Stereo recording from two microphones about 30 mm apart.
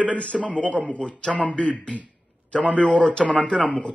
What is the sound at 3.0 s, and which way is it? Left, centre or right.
Speech, left.